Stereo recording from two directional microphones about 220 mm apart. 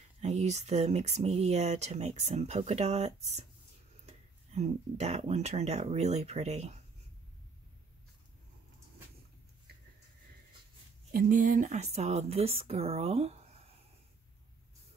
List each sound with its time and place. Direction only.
0.2 s speech: 30° right (ahead or behind)
11.1 s speech: 40° right (ahead or behind)